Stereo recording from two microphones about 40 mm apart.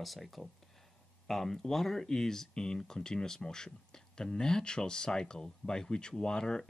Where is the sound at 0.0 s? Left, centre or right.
Centre.